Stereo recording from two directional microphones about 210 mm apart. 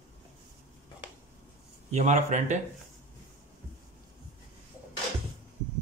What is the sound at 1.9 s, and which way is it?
Speech, 35° right (ahead or behind).